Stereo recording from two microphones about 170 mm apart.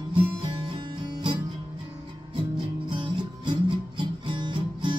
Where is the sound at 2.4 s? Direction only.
30° right (ahead or behind).